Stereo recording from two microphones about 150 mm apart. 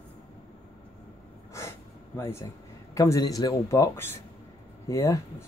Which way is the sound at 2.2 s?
20° left (ahead or behind).